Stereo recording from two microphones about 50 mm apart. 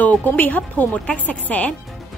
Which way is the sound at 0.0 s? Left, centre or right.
Left.